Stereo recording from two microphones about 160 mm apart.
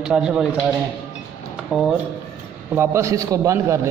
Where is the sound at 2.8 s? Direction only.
15° right (ahead or behind).